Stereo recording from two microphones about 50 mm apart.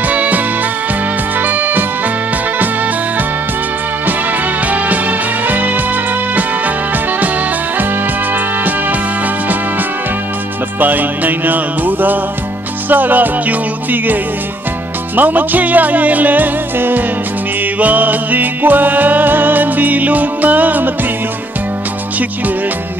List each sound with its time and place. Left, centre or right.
0.0 s music: right
1.4 s music: right
4.0 s music: right
8.3 s music: right
10.8 s music: right
15.1 s music: right